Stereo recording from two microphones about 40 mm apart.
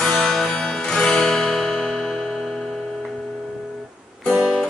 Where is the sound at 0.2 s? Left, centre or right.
Centre.